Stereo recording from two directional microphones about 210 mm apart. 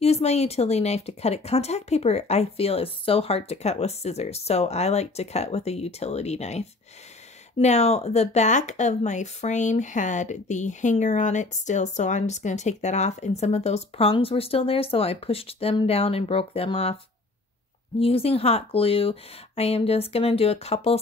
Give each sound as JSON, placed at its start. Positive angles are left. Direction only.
{"t": 0.0, "sound": "speech", "side_deg": 30}